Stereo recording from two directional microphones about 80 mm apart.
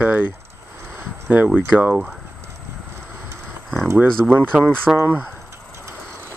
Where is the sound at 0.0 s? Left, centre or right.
Right.